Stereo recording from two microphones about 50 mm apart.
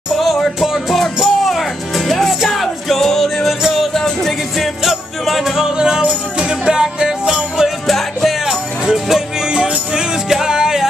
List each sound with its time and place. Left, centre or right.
0.2 s music: centre
7.8 s music: centre
9.5 s music: centre